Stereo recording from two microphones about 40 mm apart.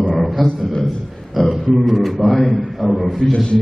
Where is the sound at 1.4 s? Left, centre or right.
Centre.